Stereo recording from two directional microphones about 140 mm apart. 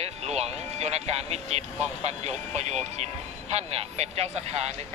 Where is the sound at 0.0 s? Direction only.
50° right (ahead or behind).